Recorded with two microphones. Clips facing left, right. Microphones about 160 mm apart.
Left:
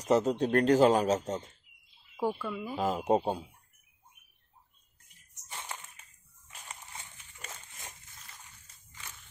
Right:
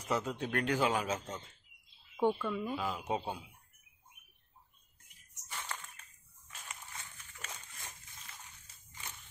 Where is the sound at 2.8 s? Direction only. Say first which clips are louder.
Left 9 dB; 45° left (ahead or behind).